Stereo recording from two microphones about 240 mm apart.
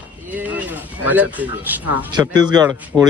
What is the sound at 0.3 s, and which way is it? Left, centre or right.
Speech, centre.